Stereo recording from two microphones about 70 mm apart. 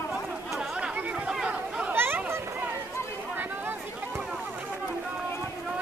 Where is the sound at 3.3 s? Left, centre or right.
Right.